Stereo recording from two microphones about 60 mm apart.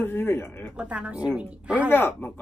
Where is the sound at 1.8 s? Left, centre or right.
Left.